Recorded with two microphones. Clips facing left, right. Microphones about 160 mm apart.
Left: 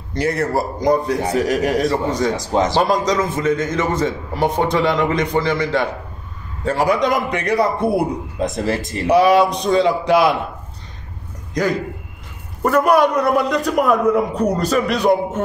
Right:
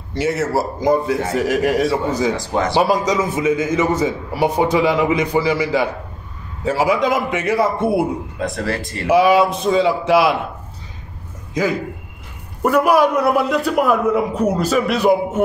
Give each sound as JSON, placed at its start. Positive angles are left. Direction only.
{"t": 0.1, "sound": "a man's voice", "side_deg": -5}
{"t": 2.3, "sound": "speech", "side_deg": 20}
{"t": 2.7, "sound": "a man's voice", "side_deg": -10}
{"t": 8.4, "sound": "speech", "side_deg": 20}
{"t": 9.1, "sound": "a man's voice", "side_deg": -5}
{"t": 11.6, "sound": "a man's voice", "side_deg": -5}